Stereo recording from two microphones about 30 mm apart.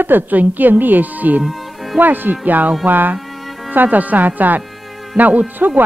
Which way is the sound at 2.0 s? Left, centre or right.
Right.